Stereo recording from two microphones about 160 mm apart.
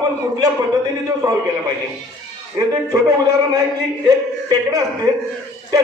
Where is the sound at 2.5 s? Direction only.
20° right (ahead or behind).